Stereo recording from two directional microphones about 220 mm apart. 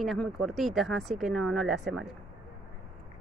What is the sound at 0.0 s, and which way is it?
Speech, centre (ahead or behind).